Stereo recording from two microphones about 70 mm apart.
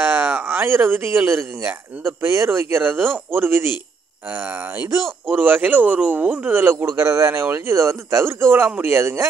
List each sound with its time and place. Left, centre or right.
0.0 s a man's voice: right
8.8 s speech: right